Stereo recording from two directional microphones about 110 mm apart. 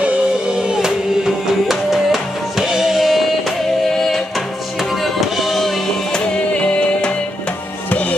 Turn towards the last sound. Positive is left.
turn(degrees=10)  # may be behind; listen again after turning